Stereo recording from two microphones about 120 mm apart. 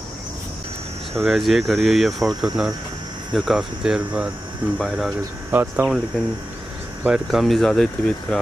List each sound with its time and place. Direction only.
1.1 s speech: centre (ahead or behind)
5.5 s speech: 15° right (ahead or behind)
6.1 s speech: 10° left (ahead or behind)
7.1 s speech: centre (ahead or behind)